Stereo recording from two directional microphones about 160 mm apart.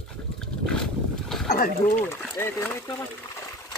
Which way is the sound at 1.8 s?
15° left (ahead or behind).